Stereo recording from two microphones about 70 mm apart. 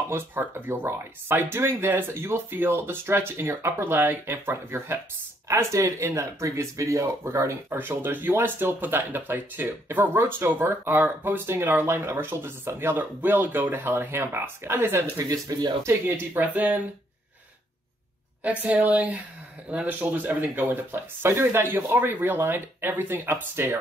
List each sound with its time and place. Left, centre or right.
0.1 s speech: right
5.5 s speech: right
7.7 s speech: right
15.2 s speech: right
15.9 s speech: right
18.4 s speech: right